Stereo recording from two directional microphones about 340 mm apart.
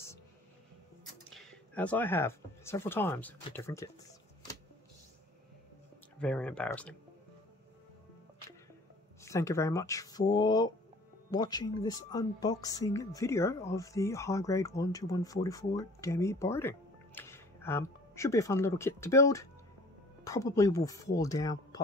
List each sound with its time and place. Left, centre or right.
1.3 s speech: centre
6.2 s speech: centre
9.2 s speech: centre